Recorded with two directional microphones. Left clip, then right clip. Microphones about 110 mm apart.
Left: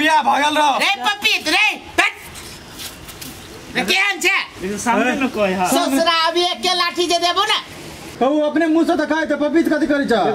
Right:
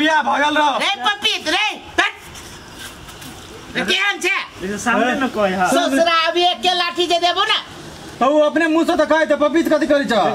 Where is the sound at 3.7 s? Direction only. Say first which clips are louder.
Left 1 dB; 10° left (ahead or behind).